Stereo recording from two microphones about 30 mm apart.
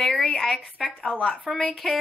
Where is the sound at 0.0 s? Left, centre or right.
Centre.